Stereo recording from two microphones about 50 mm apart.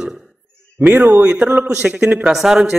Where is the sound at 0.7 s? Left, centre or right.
Right.